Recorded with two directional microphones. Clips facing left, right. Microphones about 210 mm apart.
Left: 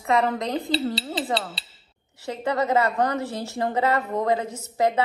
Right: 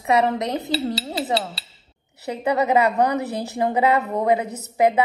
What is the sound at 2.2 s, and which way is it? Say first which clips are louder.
A woman's voice: right 3 dB; 15° right (ahead or behind).